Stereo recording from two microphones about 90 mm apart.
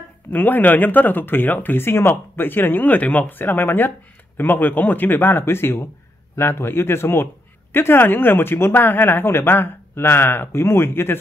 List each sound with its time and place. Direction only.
0.3 s speech: 20° left (ahead or behind)